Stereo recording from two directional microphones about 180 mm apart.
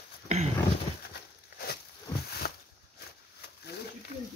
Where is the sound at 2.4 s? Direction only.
60° left (ahead or behind).